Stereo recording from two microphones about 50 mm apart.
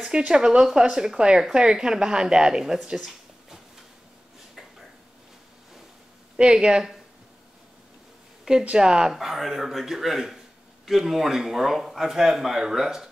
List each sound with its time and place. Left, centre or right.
0.1 s speech: centre
6.3 s speech: centre
8.6 s speech: centre
9.1 s a man's voice: centre